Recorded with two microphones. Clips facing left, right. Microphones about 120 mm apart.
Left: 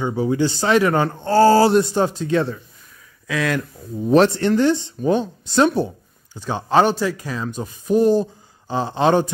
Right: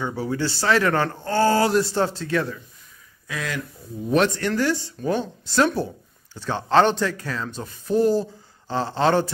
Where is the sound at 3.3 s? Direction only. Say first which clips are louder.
Left 8 dB; 80° left.